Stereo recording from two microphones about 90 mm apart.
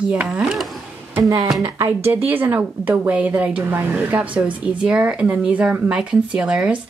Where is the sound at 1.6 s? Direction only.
30° right (ahead or behind).